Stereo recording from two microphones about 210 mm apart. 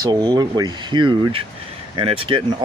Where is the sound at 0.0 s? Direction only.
20° right (ahead or behind).